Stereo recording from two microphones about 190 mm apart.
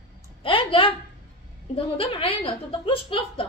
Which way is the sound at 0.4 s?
25° left (ahead or behind).